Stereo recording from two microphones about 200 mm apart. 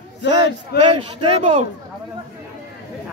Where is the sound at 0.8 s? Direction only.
25° right (ahead or behind).